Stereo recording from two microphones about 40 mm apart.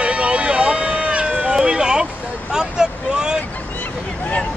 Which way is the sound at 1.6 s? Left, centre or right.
Centre.